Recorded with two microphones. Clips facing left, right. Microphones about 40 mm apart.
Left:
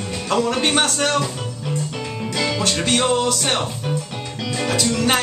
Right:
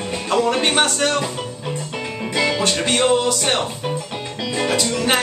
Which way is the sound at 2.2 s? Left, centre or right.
Centre.